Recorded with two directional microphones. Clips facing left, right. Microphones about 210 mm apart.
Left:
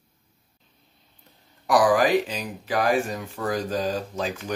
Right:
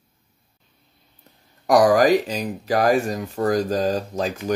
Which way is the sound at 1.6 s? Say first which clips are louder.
Right 4 dB; 45° right (ahead or behind).